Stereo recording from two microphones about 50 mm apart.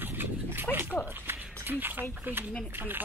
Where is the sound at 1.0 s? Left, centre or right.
Right.